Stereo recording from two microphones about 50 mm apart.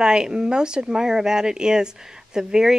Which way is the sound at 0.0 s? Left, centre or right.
Centre.